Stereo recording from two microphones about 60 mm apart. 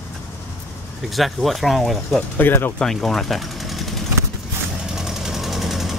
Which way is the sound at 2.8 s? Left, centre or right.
Centre.